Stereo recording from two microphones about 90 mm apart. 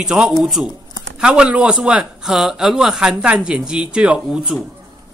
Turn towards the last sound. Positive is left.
turn(degrees=-10)  # may be behind; listen again after turning